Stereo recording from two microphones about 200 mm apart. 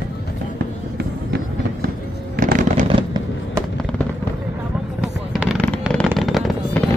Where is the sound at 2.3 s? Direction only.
40° right (ahead or behind).